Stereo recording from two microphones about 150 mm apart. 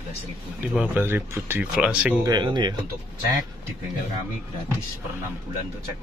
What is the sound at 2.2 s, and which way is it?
Speech, 30° right (ahead or behind).